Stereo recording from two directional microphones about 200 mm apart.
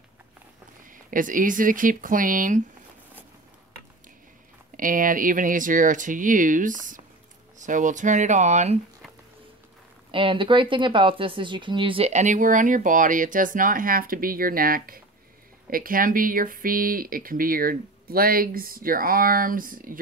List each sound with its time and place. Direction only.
1.1 s speech: 40° right (ahead or behind)
4.7 s speech: 40° right (ahead or behind)
10.1 s speech: 25° right (ahead or behind); by 20.0 s 45° right (ahead or behind)